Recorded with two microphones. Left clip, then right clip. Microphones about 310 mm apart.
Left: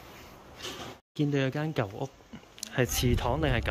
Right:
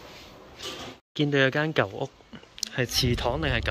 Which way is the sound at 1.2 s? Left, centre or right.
Centre.